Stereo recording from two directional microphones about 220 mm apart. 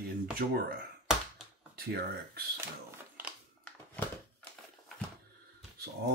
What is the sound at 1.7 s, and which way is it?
Speech, 45° right (ahead or behind).